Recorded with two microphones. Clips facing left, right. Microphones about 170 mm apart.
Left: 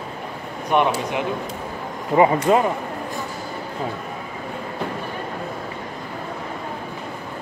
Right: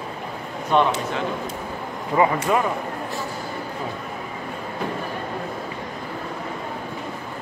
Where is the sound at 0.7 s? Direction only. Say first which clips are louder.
Even; 15° left (ahead or behind).